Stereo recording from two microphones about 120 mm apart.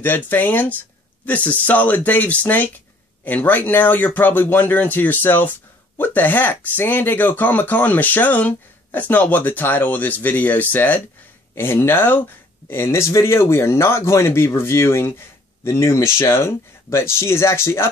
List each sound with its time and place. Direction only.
0.0 s speech: 15° left (ahead or behind)